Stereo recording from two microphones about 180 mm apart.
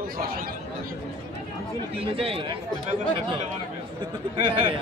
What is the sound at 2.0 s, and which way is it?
Speech, 30° right (ahead or behind).